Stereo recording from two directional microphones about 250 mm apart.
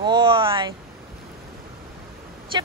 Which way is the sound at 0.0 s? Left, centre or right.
Centre.